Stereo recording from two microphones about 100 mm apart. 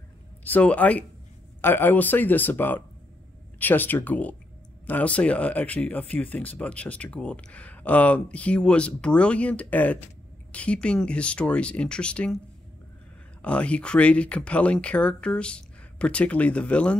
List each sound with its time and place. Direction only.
0.4 s speech: 15° left (ahead or behind)
13.4 s speech: 10° left (ahead or behind)